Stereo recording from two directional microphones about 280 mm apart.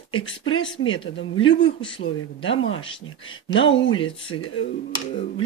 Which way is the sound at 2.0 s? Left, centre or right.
Left.